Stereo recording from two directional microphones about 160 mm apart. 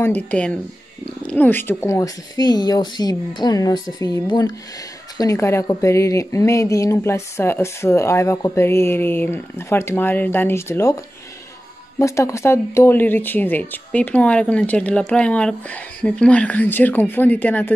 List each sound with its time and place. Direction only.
0.0 s a woman's voice: 10° left (ahead or behind)
12.0 s a woman's voice: 20° left (ahead or behind)